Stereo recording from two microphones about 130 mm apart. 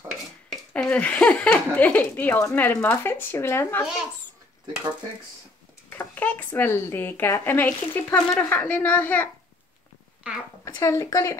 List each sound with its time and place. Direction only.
0.5 s speech: 5° left (ahead or behind)
3.8 s speech: 5° right (ahead or behind)
5.9 s speech: 15° left (ahead or behind)
10.3 s a woman's voice: 10° right (ahead or behind)
10.6 s speech: 25° left (ahead or behind)